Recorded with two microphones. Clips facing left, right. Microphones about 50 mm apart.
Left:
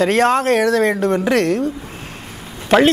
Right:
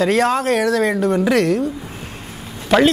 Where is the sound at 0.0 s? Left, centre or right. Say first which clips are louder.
Left 2 dB; left.